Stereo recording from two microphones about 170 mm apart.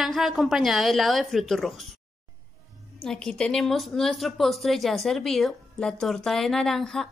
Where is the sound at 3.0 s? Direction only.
5° left (ahead or behind).